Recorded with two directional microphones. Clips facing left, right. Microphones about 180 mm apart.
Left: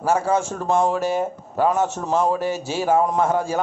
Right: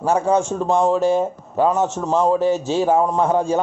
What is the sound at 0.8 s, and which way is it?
Speech, 5° left (ahead or behind).